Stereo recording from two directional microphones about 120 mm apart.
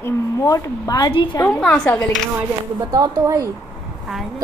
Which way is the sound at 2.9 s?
30° right (ahead or behind).